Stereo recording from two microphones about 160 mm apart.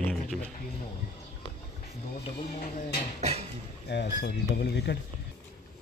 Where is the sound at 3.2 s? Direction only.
40° right (ahead or behind).